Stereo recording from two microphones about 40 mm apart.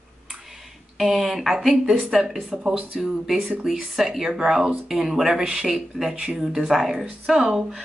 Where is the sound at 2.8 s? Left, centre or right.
Right.